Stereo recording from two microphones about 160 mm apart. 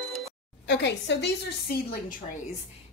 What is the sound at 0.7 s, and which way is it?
Speech, 90° left.